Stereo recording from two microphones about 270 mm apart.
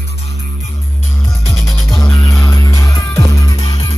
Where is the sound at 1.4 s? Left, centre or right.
Centre.